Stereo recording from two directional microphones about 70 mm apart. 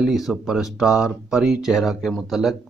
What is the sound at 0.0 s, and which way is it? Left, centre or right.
A man's voice, centre.